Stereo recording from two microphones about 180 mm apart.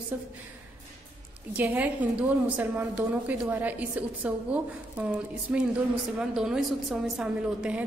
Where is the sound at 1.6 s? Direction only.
10° right (ahead or behind).